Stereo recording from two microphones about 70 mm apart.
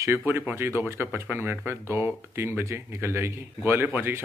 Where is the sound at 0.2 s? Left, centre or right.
Right.